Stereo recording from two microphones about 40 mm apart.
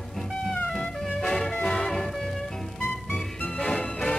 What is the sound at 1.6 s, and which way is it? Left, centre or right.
Music, centre.